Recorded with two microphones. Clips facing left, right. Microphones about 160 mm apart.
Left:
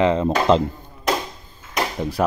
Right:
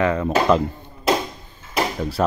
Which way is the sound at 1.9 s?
15° left (ahead or behind).